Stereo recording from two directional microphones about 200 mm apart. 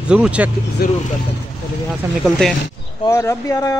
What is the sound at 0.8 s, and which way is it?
Speech, 50° left (ahead or behind).